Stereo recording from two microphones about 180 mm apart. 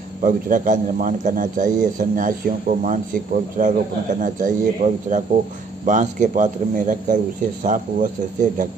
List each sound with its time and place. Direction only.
0.2 s a man's voice: 45° right (ahead or behind)